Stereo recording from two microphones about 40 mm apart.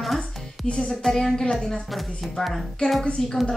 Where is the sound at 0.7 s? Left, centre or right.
Left.